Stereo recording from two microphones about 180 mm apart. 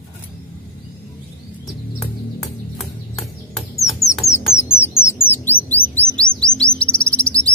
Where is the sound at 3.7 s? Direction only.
15° left (ahead or behind).